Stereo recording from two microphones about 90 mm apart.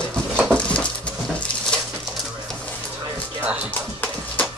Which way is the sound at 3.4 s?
15° right (ahead or behind).